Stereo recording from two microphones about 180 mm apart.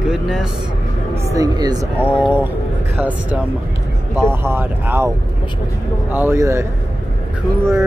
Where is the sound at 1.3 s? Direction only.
20° right (ahead or behind).